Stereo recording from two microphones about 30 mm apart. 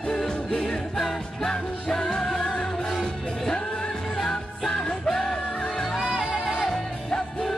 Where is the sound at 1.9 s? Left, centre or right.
Left.